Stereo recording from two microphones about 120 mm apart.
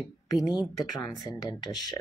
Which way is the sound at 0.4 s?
5° right (ahead or behind).